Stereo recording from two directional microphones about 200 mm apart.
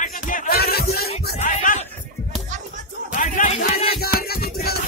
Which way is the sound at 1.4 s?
40° left (ahead or behind).